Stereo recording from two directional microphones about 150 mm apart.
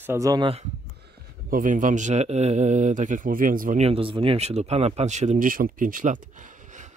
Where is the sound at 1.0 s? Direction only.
65° right (ahead or behind).